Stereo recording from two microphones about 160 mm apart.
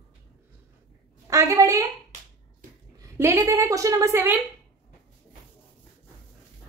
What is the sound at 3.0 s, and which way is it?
A woman's voice, 20° right (ahead or behind).